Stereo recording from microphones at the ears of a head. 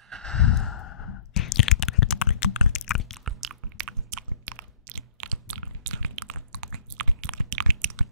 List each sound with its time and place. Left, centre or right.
0.4 s sigh: left
3.3 s chewing: right